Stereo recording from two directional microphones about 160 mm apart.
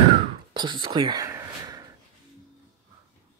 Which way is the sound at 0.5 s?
30° right (ahead or behind).